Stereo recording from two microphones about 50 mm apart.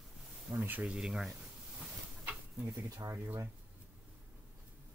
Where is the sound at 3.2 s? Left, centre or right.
Right.